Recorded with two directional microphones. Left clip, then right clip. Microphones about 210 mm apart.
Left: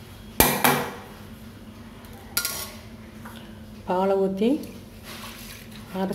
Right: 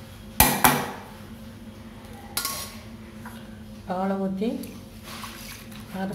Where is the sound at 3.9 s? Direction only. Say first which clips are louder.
Left 6 dB; 35° left (ahead or behind).